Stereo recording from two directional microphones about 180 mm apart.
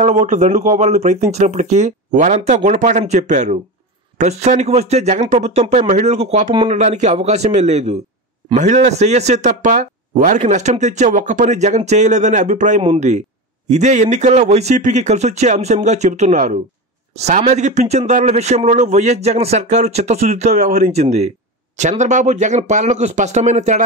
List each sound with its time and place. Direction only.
0.0 s speech: 40° right (ahead or behind)